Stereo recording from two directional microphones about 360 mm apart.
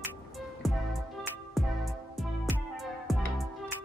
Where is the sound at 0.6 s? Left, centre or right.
Centre.